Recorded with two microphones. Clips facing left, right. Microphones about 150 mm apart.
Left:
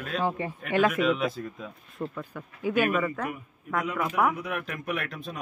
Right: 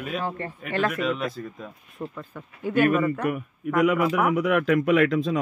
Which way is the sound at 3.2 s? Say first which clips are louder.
Right 9 dB; 80° right.